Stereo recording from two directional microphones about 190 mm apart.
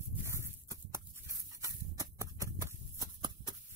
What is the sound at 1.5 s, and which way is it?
Horse, 15° right (ahead or behind).